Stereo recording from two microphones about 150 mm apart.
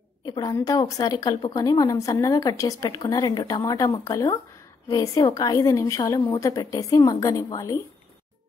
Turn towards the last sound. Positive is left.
turn(degrees=25)  # may be behind; listen again after turning